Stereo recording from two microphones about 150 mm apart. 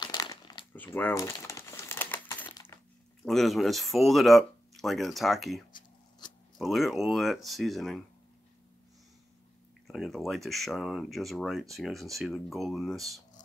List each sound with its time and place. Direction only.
0.0 s crumpling: 25° left (ahead or behind)
0.7 s crumpling: 10° left (ahead or behind)
3.3 s speech: centre (ahead or behind)
5.7 s a sound: 30° left (ahead or behind)
6.6 s speech: centre (ahead or behind)
9.8 s speech: centre (ahead or behind)